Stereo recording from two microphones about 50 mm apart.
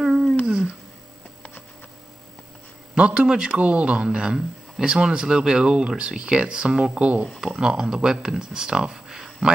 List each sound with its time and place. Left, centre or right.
0.0 s a sound: centre
3.0 s speech: right
3.3 s speech: centre
3.5 s speech: right
7.0 s speech: right
7.2 s speech: centre